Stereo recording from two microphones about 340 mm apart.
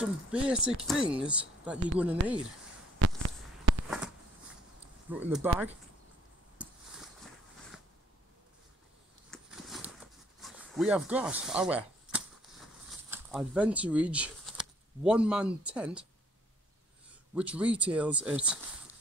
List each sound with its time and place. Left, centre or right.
0.0 s speech: centre
3.7 s a sound: right
5.1 s speech: centre
9.3 s a sound: centre
13.1 s speech: centre
17.4 s speech: centre